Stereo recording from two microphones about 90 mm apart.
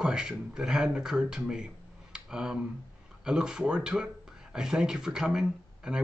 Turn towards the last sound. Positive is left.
turn(degrees=-5)  # may be behind; listen again after turning